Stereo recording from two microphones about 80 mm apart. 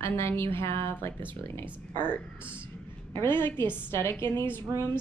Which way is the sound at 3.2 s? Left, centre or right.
Left.